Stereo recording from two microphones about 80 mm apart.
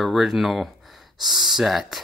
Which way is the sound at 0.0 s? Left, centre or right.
Centre.